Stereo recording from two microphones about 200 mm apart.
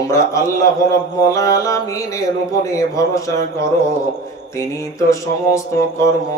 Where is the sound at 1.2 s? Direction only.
15° left (ahead or behind).